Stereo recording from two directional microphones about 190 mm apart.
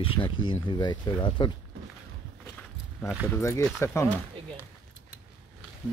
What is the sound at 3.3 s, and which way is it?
Speech, 15° left (ahead or behind).